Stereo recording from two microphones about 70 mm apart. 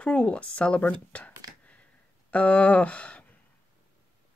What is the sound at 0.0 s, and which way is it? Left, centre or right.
Speech, centre.